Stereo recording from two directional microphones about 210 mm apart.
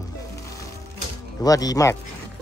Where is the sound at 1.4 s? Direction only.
15° left (ahead or behind).